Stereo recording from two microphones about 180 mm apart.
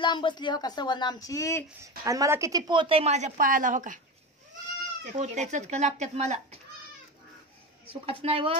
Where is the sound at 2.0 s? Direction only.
20° right (ahead or behind); by 4.0 s 45° right (ahead or behind).